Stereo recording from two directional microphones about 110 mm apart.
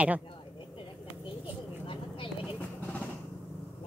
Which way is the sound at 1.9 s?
55° left (ahead or behind).